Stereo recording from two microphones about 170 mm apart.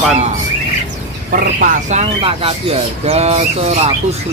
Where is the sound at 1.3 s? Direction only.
50° right (ahead or behind).